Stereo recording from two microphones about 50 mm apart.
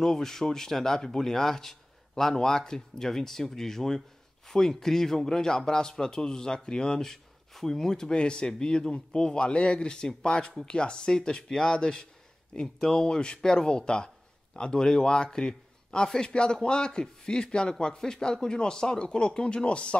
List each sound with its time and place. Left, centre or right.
0.0 s speech: centre